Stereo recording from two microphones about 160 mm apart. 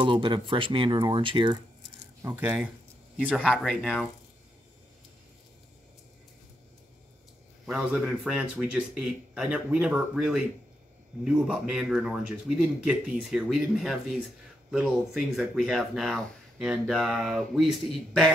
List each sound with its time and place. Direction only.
0.0 s speech: 30° right (ahead or behind)
2.2 s speech: 15° right (ahead or behind)
3.5 s speech: centre (ahead or behind)
7.6 s speech: centre (ahead or behind)